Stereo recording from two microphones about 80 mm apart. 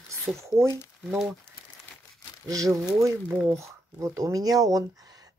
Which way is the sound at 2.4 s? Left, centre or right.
Right.